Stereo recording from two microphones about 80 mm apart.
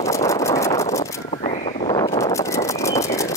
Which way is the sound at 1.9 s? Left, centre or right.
Left.